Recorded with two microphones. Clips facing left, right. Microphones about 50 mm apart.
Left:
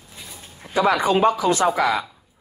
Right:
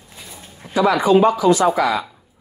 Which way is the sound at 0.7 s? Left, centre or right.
Left.